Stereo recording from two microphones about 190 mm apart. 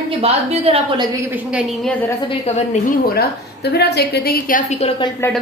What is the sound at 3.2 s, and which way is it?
A woman's voice, 60° left (ahead or behind).